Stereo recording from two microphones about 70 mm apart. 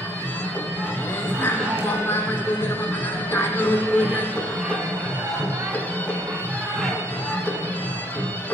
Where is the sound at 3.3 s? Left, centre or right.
Left.